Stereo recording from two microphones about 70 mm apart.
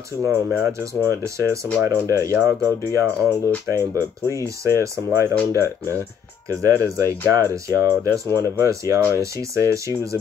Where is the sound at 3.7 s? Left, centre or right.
Right.